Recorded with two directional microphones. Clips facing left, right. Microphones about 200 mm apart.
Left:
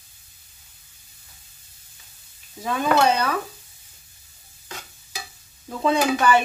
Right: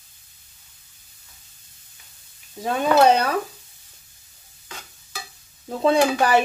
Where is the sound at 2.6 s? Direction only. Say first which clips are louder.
Right 3 dB; 30° right (ahead or behind).